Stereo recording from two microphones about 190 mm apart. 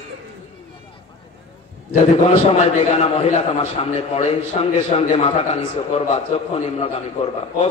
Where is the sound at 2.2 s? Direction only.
35° left (ahead or behind).